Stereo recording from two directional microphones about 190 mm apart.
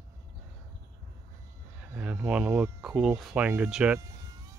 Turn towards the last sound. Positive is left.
turn(degrees=-5)  # may be behind; listen again after turning